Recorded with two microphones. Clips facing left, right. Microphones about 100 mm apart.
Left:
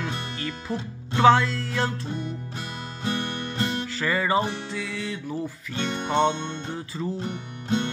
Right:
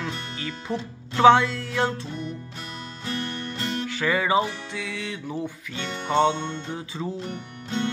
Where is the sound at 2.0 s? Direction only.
25° left (ahead or behind).